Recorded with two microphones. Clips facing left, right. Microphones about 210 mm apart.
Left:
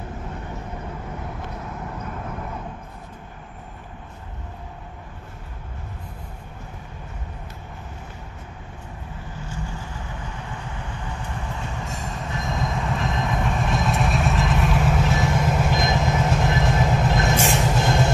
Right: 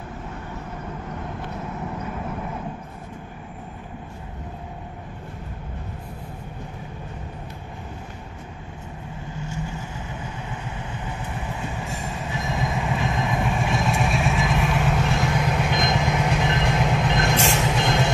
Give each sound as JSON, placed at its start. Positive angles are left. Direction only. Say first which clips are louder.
{"t": 11.1, "sound": "train", "louder": "right 1 dB", "side_deg": -10}